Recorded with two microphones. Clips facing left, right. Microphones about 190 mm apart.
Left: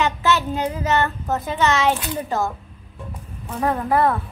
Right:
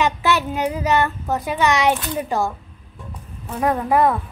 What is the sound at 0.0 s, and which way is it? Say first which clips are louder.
Child singing: right 1 dB; 15° right (ahead or behind).